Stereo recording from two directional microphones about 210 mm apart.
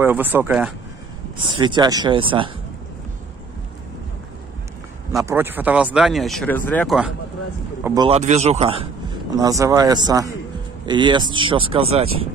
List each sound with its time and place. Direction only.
0.0 s speech: 10° right (ahead or behind)
1.5 s speech: 20° right (ahead or behind)
5.2 s speech: 10° right (ahead or behind)
7.8 s speech: 15° right (ahead or behind)
8.1 s speech: 30° right (ahead or behind)
9.4 s speech: 15° right (ahead or behind)